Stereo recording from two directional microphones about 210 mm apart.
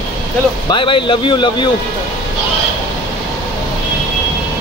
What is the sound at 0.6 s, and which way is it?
Speech, 25° left (ahead or behind).